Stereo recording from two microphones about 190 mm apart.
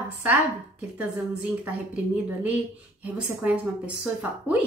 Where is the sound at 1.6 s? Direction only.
10° right (ahead or behind).